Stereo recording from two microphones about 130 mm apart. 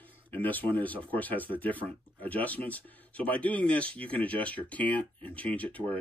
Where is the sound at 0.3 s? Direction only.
15° left (ahead or behind).